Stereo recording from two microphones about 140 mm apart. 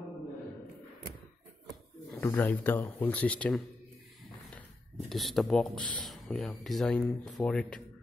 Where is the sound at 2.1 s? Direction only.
15° left (ahead or behind).